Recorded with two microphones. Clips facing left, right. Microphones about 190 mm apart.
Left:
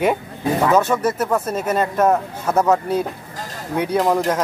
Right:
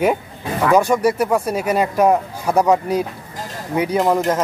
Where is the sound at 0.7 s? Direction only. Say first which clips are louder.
Right 2 dB; 15° right (ahead or behind).